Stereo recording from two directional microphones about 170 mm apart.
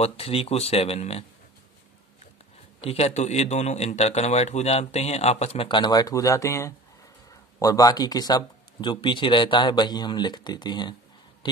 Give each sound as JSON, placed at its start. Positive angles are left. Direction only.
{"t": 0.0, "sound": "speech", "side_deg": 35}
{"t": 2.8, "sound": "speech", "side_deg": 40}